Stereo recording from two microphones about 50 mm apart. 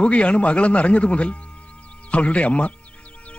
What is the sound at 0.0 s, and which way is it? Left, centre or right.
Speech, left.